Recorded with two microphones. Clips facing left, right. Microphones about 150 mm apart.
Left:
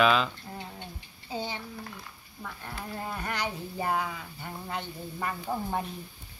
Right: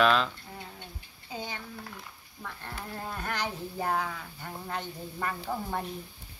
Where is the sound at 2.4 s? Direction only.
5° left (ahead or behind).